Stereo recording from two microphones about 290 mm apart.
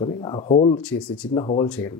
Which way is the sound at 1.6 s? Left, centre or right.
Centre.